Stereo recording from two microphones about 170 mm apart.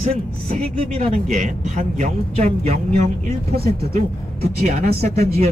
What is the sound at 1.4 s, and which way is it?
Speech, 50° right (ahead or behind).